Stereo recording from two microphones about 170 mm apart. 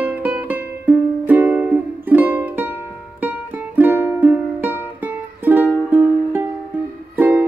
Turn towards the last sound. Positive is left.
turn(degrees=-10)  # may be behind; listen again after turning